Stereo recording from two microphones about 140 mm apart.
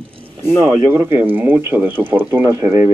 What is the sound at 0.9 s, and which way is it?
Speech, 15° right (ahead or behind).